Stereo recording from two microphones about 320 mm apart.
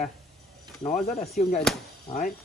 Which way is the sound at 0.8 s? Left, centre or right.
Left.